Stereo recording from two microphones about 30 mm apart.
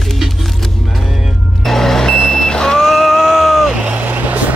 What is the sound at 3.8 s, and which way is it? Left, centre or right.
Vehicle, right.